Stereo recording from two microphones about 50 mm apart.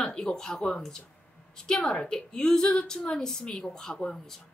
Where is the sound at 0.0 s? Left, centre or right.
Centre.